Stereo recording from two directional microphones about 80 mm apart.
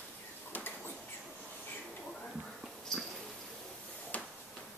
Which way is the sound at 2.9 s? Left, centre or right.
Centre.